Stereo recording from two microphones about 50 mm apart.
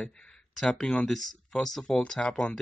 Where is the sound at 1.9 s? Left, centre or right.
Centre.